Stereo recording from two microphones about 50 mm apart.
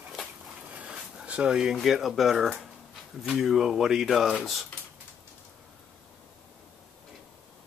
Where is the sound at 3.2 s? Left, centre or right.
Centre.